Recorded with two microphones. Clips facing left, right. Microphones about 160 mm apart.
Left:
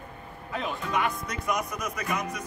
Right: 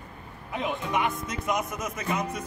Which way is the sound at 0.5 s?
20° right (ahead or behind).